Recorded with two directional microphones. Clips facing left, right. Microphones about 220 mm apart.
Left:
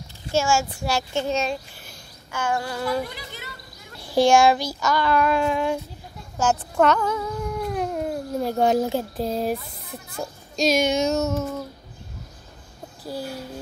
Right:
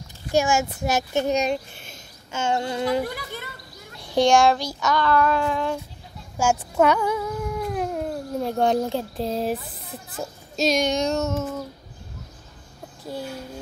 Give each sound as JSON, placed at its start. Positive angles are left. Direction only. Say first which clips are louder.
{"t": 0.3, "sound": "a child's voice", "louder": "right 1 dB", "side_deg": -15}
{"t": 4.0, "sound": "speech", "louder": "left 1 dB", "side_deg": 5}
{"t": 5.0, "sound": "a sound", "louder": "left 1 dB", "side_deg": 15}
{"t": 6.3, "sound": "speech", "louder": "even", "side_deg": -10}
{"t": 13.0, "sound": "speech", "louder": "left 1 dB", "side_deg": 5}